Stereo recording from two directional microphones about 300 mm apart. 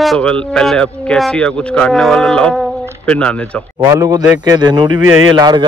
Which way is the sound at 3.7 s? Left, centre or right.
Centre.